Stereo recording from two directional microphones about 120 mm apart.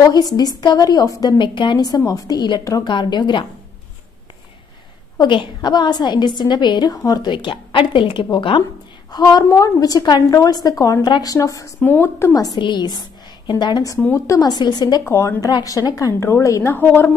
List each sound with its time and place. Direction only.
0.0 s a woman's voice: 30° left (ahead or behind)
5.2 s a woman's voice: 40° left (ahead or behind); by 12.4 s 20° left (ahead or behind)
12.4 s a woman's voice: 40° left (ahead or behind)
14.1 s a woman's voice: 25° left (ahead or behind)
14.5 s a woman's voice: 35° left (ahead or behind)
15.0 s a woman's voice: 25° left (ahead or behind)